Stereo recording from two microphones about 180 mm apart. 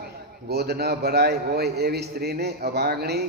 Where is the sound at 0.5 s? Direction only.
65° right (ahead or behind).